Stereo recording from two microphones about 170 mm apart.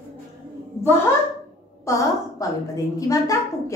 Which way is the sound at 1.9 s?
20° left (ahead or behind).